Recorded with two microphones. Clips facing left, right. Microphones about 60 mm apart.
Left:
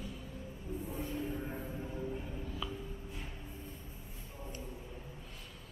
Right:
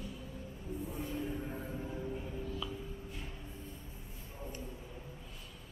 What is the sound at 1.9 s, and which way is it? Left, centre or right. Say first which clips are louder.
Music: even; centre.